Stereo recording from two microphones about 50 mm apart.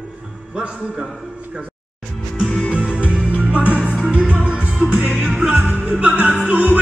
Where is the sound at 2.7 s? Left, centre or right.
Right.